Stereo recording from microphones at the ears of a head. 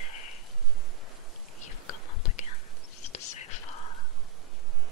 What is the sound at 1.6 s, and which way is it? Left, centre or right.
Whispering, left.